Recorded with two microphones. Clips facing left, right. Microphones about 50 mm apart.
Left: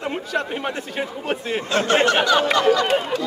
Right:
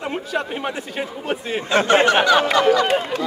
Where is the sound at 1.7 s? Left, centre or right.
Right.